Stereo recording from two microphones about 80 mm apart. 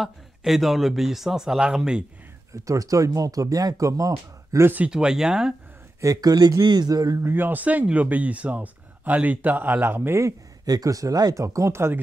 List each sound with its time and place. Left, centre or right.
0.0 s speech: centre
2.5 s speech: right
4.6 s speech: centre
4.9 s speech: centre
5.9 s speech: right
6.6 s a man's voice: right
7.2 s speech: right
11.3 s speech: right